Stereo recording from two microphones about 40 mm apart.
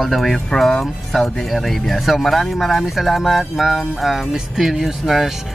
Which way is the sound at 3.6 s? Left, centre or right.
Centre.